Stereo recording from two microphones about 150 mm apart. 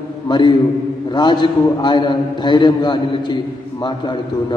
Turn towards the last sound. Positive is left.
turn(degrees=30)  # may be behind; listen again after turning